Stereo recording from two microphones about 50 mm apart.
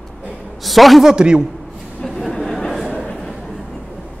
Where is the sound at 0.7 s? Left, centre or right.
Centre.